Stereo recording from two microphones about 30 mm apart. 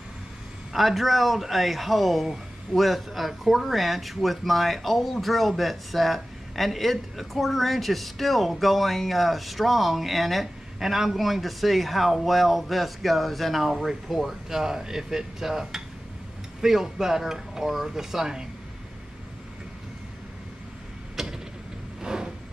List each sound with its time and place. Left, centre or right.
0.7 s speech: centre
21.2 s a sound: centre
22.0 s vehicle: right